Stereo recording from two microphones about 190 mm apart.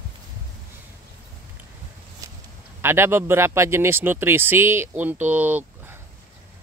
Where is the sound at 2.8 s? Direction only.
10° right (ahead or behind).